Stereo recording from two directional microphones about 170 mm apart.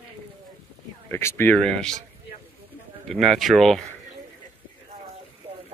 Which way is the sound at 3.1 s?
Centre (ahead or behind).